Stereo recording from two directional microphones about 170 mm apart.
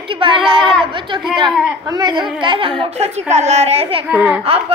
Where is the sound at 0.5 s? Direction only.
30° right (ahead or behind).